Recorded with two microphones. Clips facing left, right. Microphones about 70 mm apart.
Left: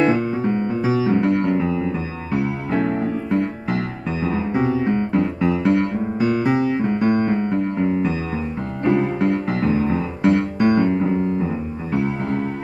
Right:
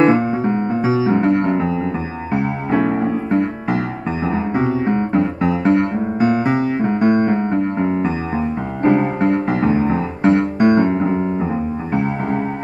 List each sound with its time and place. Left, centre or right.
0.0 s music: right